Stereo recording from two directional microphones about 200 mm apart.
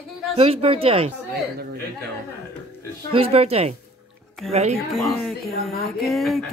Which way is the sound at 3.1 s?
30° right (ahead or behind).